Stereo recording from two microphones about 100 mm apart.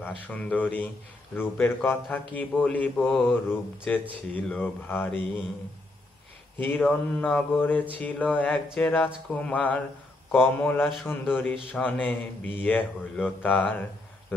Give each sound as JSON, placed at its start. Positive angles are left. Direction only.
{"t": 0.0, "sound": "a man's voice", "side_deg": 15}
{"t": 6.7, "sound": "a man's voice", "side_deg": 15}
{"t": 10.8, "sound": "speech", "side_deg": 0}
{"t": 11.1, "sound": "a man's voice", "side_deg": 20}